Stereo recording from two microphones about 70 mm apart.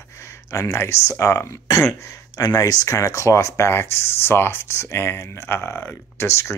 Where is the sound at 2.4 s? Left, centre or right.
Left.